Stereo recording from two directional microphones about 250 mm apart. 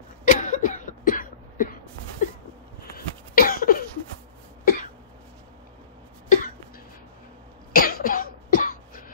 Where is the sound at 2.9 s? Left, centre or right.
Left.